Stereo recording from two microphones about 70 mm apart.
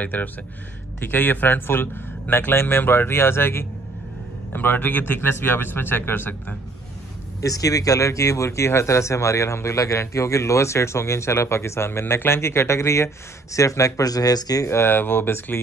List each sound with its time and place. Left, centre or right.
0.0 s speech: left
7.4 s speech: left
14.7 s speech: left